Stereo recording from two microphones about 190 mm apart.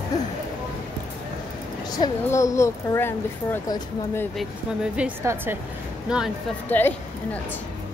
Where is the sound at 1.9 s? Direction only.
20° left (ahead or behind).